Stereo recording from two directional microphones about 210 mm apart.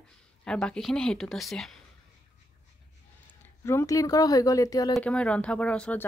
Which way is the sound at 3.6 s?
15° left (ahead or behind).